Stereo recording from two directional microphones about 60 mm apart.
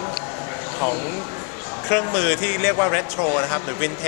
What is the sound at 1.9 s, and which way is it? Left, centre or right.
A man's voice, left.